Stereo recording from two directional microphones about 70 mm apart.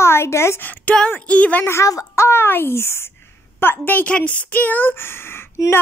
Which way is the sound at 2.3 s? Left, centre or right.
Left.